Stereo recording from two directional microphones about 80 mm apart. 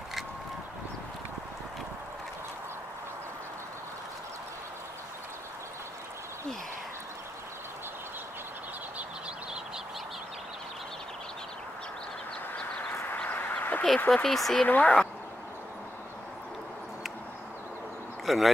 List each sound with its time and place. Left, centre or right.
12.9 s duck: left
13.9 s speech: centre
14.7 s speech: centre
18.2 s speech: centre